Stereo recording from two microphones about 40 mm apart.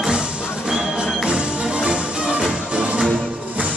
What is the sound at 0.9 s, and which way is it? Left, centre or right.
Music, right.